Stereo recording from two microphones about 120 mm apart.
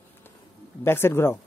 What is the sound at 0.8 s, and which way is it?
Speech, 20° left (ahead or behind).